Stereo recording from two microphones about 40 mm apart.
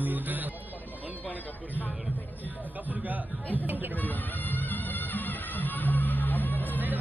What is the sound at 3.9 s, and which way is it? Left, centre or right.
Music, left.